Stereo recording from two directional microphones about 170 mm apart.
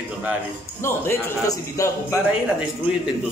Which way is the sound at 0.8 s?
15° left (ahead or behind).